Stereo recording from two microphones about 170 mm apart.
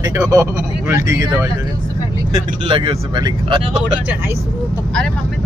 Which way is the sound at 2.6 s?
30° right (ahead or behind).